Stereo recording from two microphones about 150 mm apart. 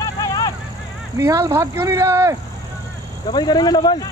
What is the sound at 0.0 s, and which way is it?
Vehicle, 25° left (ahead or behind).